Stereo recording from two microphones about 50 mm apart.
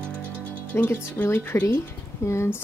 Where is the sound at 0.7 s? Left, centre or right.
Left.